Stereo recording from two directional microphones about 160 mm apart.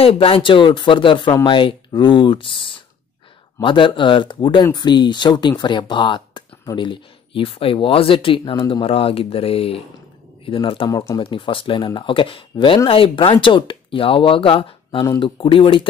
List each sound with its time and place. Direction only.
0.0 s speech: 35° left (ahead or behind)